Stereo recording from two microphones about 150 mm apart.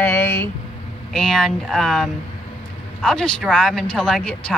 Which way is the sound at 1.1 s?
Centre (ahead or behind).